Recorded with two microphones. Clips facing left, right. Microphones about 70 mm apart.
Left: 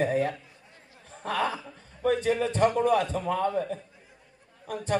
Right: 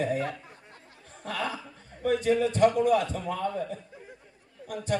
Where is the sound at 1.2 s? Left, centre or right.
Left.